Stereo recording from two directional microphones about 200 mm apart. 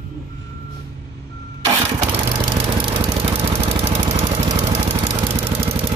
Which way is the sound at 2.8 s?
30° right (ahead or behind).